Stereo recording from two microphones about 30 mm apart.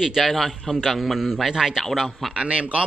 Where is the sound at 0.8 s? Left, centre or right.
Centre.